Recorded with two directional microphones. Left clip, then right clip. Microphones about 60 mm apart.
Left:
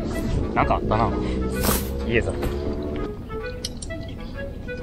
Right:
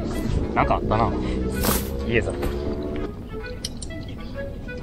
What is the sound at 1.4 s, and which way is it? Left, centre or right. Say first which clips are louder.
Speech: even; right.